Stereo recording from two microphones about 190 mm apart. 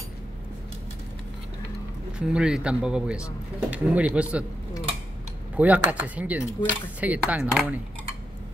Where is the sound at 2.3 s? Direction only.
5° right (ahead or behind).